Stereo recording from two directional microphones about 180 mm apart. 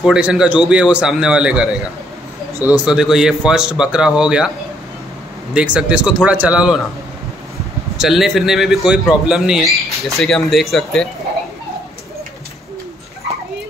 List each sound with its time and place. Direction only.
0.0 s a man's voice: 5° right (ahead or behind)
5.5 s a man's voice: 5° right (ahead or behind)
8.0 s a man's voice: centre (ahead or behind)